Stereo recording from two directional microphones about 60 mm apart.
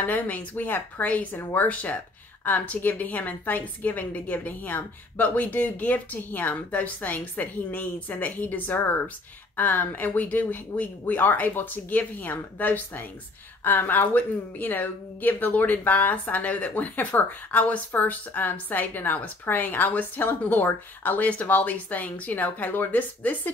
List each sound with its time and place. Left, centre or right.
0.0 s a woman's voice: left